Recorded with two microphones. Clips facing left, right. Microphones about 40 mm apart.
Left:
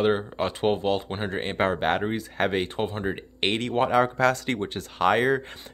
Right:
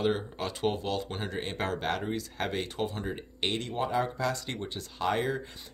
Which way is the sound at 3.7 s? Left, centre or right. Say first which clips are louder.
Left 11 dB; left.